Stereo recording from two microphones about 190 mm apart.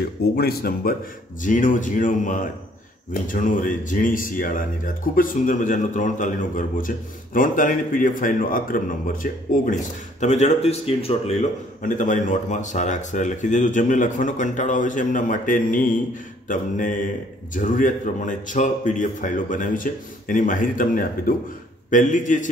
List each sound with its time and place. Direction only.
0.4 s a man's voice: 55° left (ahead or behind); by 11.3 s 30° left (ahead or behind)
11.8 s a man's voice: 45° left (ahead or behind)